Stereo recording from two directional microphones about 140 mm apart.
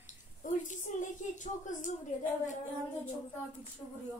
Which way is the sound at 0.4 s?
65° left (ahead or behind).